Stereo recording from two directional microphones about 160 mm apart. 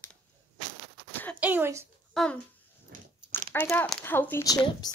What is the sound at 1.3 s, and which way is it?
Speech, 10° right (ahead or behind).